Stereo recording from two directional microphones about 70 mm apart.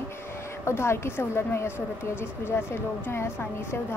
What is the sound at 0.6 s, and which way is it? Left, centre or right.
Speech, left.